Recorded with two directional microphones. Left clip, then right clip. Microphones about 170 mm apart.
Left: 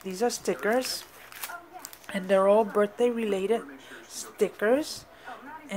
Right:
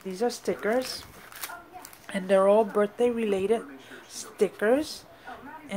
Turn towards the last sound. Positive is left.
turn(degrees=0)  # may be behind; listen again after turning